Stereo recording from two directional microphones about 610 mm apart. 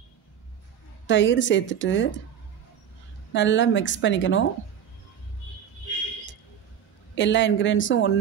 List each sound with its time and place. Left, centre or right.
1.0 s speech: centre
3.3 s speech: centre
7.2 s speech: centre